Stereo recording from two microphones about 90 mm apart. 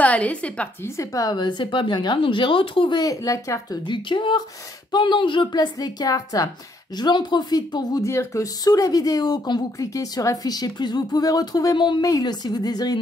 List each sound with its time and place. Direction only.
0.0 s a woman's voice: 15° left (ahead or behind)
0.8 s a woman's voice: 40° left (ahead or behind); by 3.0 s 75° left (ahead or behind)
3.0 s speech: 40° left (ahead or behind)
3.8 s a woman's voice: 65° left (ahead or behind); by 6.5 s 40° left (ahead or behind)
7.0 s speech: 55° left (ahead or behind)
8.1 s speech: 30° left (ahead or behind); by 9.6 s 50° left (ahead or behind)
9.8 s speech: 40° left (ahead or behind)